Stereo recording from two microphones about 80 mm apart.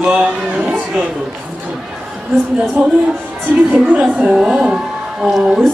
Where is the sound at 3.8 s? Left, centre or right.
Centre.